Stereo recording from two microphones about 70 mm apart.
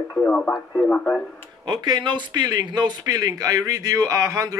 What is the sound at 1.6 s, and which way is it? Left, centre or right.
Speech, right.